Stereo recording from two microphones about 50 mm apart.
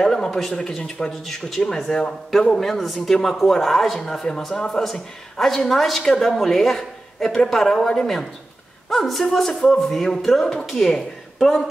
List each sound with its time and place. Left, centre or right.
0.0 s a woman's voice: centre
1.9 s speech: left
2.3 s a man's voice: centre